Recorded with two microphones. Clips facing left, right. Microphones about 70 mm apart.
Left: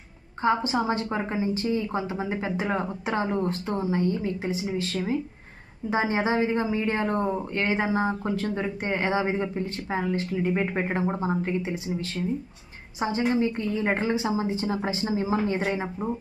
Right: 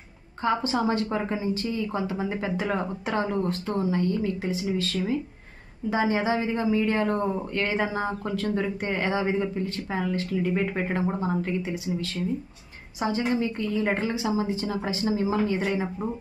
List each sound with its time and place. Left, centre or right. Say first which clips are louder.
0.4 s speech: left 1 dB; left